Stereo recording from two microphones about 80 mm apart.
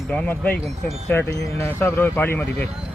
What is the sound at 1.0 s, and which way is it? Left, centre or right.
Speech, left.